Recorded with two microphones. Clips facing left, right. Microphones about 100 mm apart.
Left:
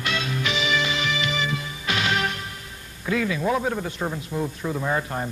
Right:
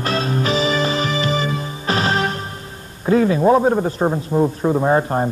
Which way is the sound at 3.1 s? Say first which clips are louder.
Right 10 dB; 35° right (ahead or behind).